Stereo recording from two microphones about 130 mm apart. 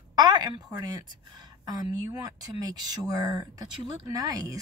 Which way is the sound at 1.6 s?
30° right (ahead or behind).